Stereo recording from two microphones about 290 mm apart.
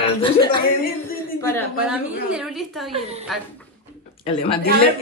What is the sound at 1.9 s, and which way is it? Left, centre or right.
A woman's voice, centre.